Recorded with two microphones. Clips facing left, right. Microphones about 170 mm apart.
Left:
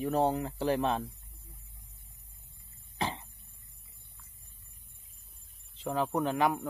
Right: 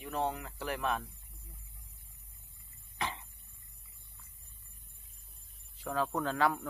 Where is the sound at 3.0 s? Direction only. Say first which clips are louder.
Left 4 dB; 30° left (ahead or behind).